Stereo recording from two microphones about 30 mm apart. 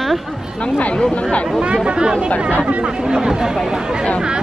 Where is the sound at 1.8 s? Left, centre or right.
Right.